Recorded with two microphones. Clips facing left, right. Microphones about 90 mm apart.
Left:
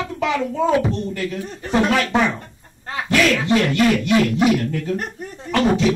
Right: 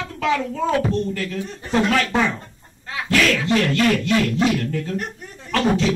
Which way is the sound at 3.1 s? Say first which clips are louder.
Left 2 dB; 20° left (ahead or behind).